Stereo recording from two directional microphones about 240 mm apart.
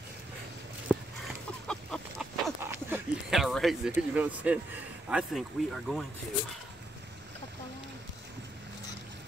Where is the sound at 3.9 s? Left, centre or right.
Centre.